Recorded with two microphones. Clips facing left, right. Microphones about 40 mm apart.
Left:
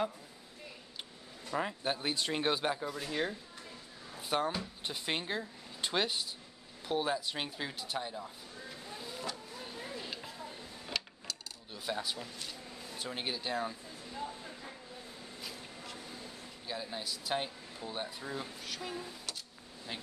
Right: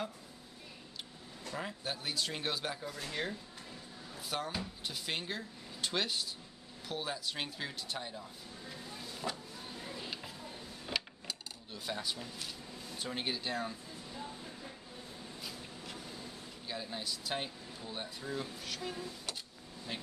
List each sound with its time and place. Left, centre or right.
1.5 s speech: centre
4.3 s speech: left
9.3 s speech: centre
9.9 s a sound: centre
11.7 s speech: centre
15.4 s a sound: centre
16.6 s speech: centre